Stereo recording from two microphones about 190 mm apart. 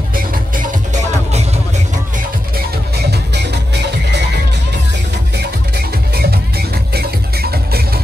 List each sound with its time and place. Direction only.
0.1 s music: 45° right (ahead or behind)
5.4 s music: 55° right (ahead or behind)